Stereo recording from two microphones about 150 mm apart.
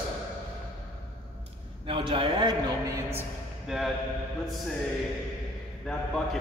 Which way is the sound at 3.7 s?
Centre (ahead or behind).